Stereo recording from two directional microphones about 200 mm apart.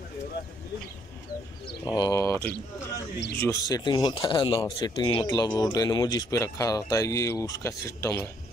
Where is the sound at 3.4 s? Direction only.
15° left (ahead or behind).